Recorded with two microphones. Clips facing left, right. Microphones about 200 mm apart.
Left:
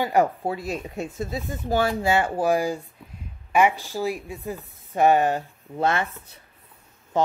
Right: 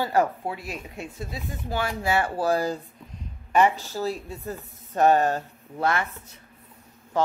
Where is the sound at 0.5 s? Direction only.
40° left (ahead or behind).